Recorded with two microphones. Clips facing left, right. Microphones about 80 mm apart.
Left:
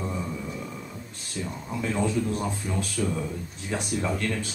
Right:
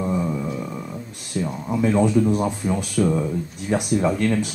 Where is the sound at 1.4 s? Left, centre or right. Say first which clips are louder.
Right 9 dB; centre.